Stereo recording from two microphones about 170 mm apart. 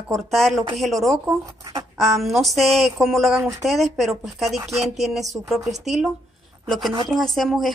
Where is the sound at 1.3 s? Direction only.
20° right (ahead or behind).